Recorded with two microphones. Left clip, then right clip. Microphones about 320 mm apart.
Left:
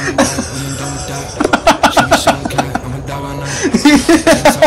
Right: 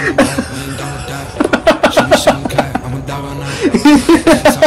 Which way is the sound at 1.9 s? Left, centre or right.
Centre.